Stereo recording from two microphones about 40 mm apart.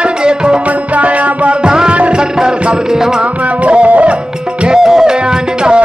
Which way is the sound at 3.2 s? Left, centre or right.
Right.